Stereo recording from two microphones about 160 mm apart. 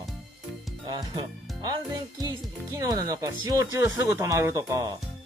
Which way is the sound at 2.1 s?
20° right (ahead or behind).